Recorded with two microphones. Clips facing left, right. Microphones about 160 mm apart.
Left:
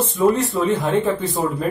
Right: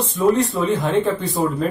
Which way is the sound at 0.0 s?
Centre (ahead or behind).